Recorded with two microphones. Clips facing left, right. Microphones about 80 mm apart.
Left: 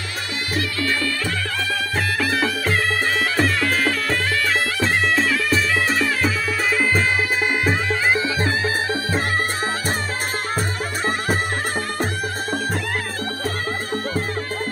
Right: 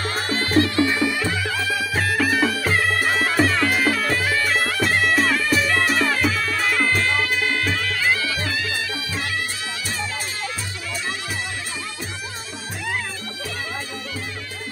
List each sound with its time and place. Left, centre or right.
0.6 s music: right
2.0 s music: centre
7.6 s music: left